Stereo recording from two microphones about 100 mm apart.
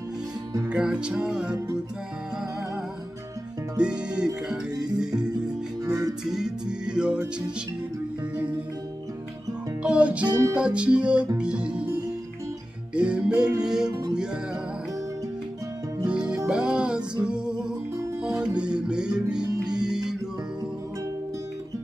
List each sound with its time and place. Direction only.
0.7 s music: 10° right (ahead or behind)
3.7 s music: 10° right (ahead or behind)
5.9 s music: 35° right (ahead or behind)
6.2 s music: 5° right (ahead or behind)
8.4 s music: 15° right (ahead or behind)
9.8 s music: 15° right (ahead or behind)
12.9 s music: 10° right (ahead or behind)
16.1 s music: 10° right (ahead or behind)